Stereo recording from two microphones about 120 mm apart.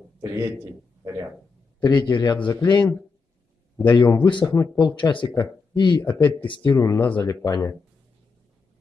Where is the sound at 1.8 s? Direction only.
40° left (ahead or behind).